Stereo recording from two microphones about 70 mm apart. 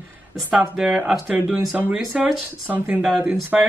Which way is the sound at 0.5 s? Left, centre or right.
Centre.